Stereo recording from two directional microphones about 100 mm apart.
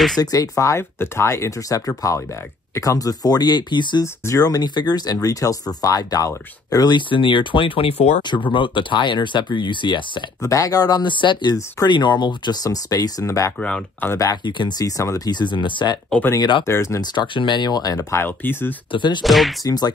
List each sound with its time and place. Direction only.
0.2 s speech: 35° left (ahead or behind)
4.0 s speech: 35° left (ahead or behind); by 8.2 s 80° left
8.2 s speech: 50° left (ahead or behind)
10.4 s speech: 35° left (ahead or behind)
13.6 s speech: 10° left (ahead or behind)
14.0 s speech: 30° left (ahead or behind)
14.4 s speech: 50° left (ahead or behind)
14.9 s speech: 35° left (ahead or behind)
16.6 s speech: 30° left (ahead or behind)
17.0 s speech: 45° left (ahead or behind)
18.1 s speech: 20° left (ahead or behind)
18.9 s speech: 50° left (ahead or behind)
19.2 s whip: centre (ahead or behind)
19.6 s speech: 45° left (ahead or behind)